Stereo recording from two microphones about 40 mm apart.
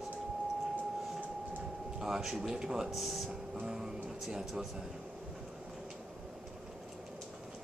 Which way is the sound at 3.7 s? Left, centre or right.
Centre.